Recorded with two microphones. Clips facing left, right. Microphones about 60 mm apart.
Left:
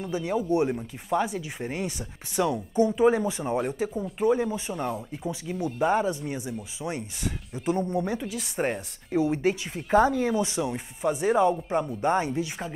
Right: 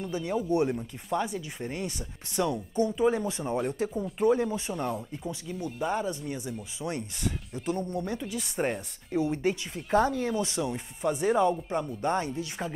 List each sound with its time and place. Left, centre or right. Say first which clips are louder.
0.0 s speech: left 2 dB; centre
5.8 s speech: left 6 dB; left
6.5 s speech: left 1 dB; centre